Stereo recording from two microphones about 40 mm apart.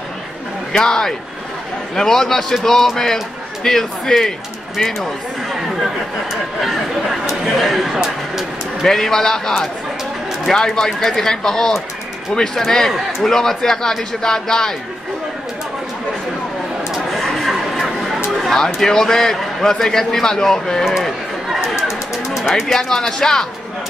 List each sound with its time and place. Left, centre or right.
0.7 s a man's voice: centre
6.6 s speech: centre
8.8 s a man's voice: centre
16.9 s a sound: centre
18.4 s a man's voice: centre
21.8 s speech: centre
22.7 s a man's voice: centre